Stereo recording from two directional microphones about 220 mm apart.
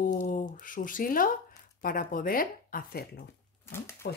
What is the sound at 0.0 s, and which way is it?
Speech, 35° left (ahead or behind).